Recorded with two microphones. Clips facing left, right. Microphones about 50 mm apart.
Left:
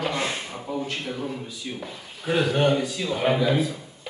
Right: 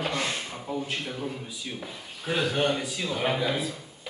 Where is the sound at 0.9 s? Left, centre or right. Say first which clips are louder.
Left 3 dB; centre.